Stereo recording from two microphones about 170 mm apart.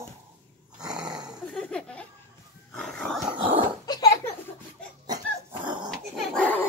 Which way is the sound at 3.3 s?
30° right (ahead or behind).